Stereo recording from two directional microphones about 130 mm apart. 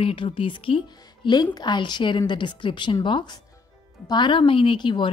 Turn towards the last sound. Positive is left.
turn(degrees=40)  # may be behind; listen again after turning